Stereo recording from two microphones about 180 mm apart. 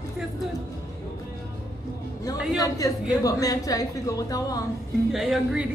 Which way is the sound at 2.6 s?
20° left (ahead or behind).